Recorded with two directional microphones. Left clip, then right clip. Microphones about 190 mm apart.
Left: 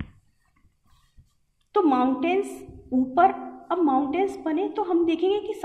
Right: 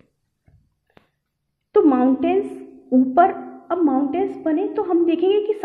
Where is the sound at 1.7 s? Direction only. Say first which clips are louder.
Right 5 dB; 30° right (ahead or behind).